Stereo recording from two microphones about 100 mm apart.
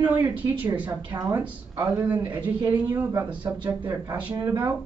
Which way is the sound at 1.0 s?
40° right (ahead or behind).